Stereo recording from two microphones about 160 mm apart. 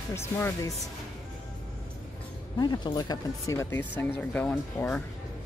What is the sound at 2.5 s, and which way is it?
Speech, 25° left (ahead or behind).